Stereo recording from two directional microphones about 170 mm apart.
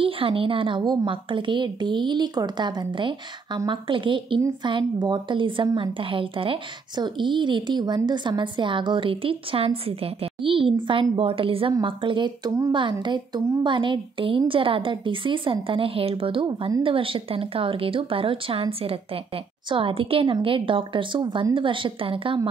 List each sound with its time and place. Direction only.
0.0 s a woman's voice: 30° right (ahead or behind)